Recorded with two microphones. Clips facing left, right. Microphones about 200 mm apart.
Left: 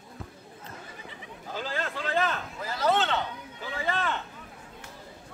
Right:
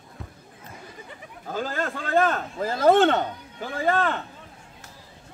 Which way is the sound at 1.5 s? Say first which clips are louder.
Right 5 dB; 45° right (ahead or behind).